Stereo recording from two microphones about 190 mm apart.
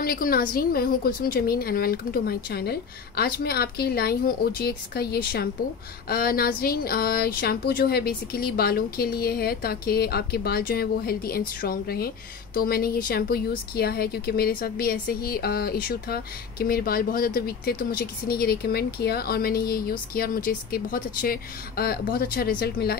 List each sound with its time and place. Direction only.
0.0 s speech: 50° left (ahead or behind)